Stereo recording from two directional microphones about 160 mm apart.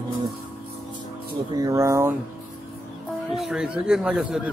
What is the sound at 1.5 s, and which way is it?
Speech, 20° right (ahead or behind).